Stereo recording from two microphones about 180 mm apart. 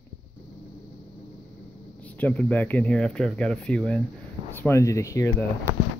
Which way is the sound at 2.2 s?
10° left (ahead or behind).